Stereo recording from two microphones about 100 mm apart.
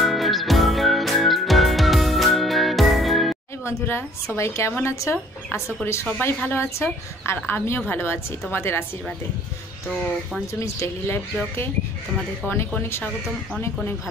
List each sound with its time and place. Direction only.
0.0 s music: centre (ahead or behind)
3.6 s speech: 20° left (ahead or behind)
10.4 s speech: 30° left (ahead or behind)
12.4 s speech: 20° left (ahead or behind)